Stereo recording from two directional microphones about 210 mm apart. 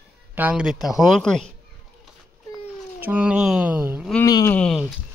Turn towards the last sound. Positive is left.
turn(degrees=0)  # may be behind; listen again after turning